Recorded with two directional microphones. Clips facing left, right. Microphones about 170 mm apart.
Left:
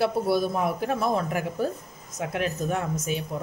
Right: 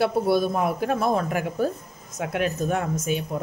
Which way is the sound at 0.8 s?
70° right (ahead or behind).